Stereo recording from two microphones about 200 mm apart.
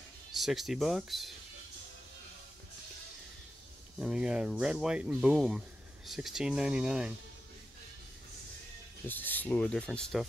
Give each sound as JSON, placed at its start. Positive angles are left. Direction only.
{"t": 0.3, "sound": "speech", "side_deg": 0}
{"t": 4.0, "sound": "speech", "side_deg": -5}
{"t": 9.0, "sound": "speech", "side_deg": 10}